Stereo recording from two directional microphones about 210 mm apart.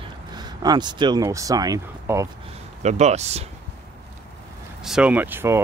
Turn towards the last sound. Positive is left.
turn(degrees=-10)  # may be behind; listen again after turning